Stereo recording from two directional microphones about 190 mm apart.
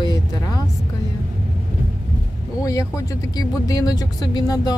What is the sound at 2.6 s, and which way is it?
Speech, 15° left (ahead or behind).